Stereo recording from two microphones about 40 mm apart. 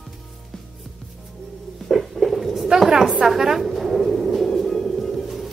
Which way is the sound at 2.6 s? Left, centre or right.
Centre.